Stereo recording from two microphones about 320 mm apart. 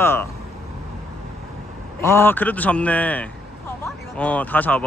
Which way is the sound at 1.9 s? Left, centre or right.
Centre.